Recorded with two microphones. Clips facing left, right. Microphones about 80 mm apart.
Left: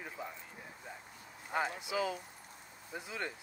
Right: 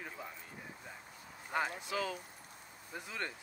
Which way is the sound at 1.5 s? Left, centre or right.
Centre.